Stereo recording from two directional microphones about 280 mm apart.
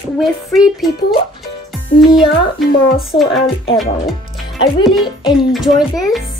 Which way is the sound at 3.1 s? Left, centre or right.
Centre.